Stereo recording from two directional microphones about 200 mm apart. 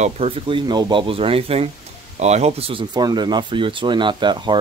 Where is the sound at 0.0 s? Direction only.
30° right (ahead or behind).